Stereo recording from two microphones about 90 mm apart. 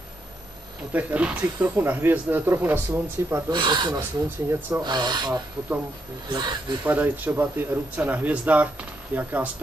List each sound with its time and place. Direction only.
0.9 s speech: 15° right (ahead or behind)
3.4 s speech: 55° right (ahead or behind)
4.5 s speech: 25° right (ahead or behind)
4.8 s speech: 50° right (ahead or behind)
6.8 s speech: 20° right (ahead or behind)